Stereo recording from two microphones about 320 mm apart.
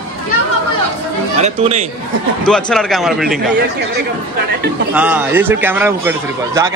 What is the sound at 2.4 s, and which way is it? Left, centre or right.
A man's voice, centre.